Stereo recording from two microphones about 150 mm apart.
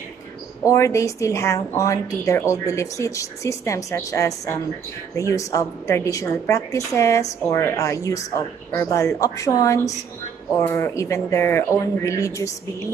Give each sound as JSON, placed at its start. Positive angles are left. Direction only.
{"t": 0.7, "sound": "a woman's voice", "side_deg": 20}